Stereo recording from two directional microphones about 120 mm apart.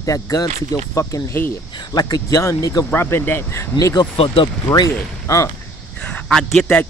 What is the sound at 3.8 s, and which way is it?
Speech, 35° left (ahead or behind).